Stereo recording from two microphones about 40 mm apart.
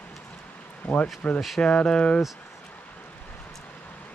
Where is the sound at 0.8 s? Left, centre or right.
Left.